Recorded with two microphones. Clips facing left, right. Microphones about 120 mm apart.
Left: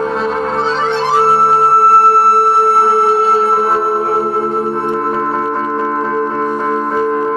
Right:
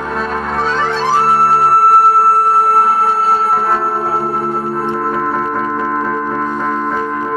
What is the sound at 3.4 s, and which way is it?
Music, 25° left (ahead or behind).